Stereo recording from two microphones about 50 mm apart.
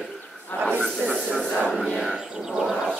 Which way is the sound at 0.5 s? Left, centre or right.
Left.